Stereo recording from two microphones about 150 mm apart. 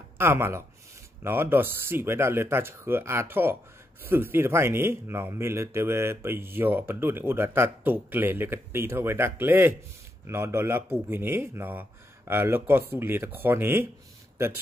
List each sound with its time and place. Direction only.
0.2 s a man's voice: 15° right (ahead or behind)